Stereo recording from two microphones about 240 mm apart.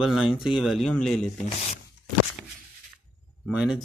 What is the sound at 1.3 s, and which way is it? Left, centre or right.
Speech, left.